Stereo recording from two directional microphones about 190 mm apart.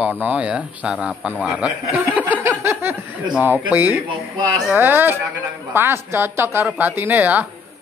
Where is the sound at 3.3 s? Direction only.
10° right (ahead or behind).